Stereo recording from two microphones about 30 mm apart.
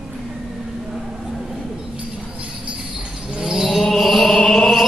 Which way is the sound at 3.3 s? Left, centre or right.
Centre.